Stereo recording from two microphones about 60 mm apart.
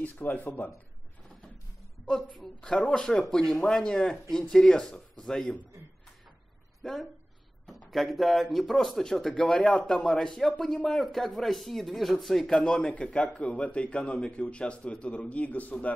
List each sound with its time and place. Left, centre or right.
0.0 s a man's voice: left
2.0 s speech: centre
6.8 s a woman's voice: centre
12.5 s a man's voice: centre